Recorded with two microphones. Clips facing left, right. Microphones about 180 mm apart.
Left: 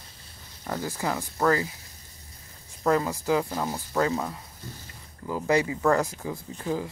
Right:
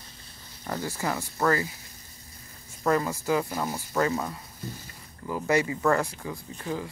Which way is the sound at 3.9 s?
5° left (ahead or behind).